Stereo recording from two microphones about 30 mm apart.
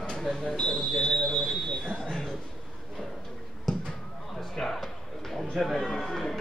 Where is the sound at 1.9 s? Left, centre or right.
Left.